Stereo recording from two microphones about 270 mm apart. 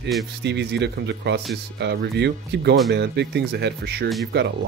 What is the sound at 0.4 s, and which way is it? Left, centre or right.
Speech, right.